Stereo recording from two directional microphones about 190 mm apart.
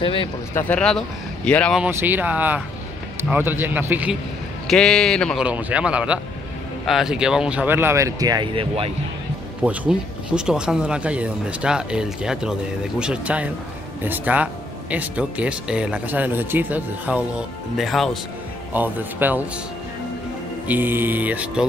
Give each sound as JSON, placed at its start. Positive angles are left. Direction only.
{"t": 0.0, "sound": "speech", "side_deg": 30}
{"t": 0.6, "sound": "speech", "side_deg": 5}
{"t": 1.8, "sound": "speech", "side_deg": -10}
{"t": 4.6, "sound": "speech", "side_deg": 0}
{"t": 9.7, "sound": "speech", "side_deg": -5}
{"t": 20.6, "sound": "speech", "side_deg": -10}